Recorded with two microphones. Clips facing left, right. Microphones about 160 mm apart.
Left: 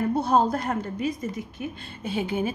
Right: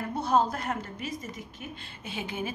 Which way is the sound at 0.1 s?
30° left (ahead or behind).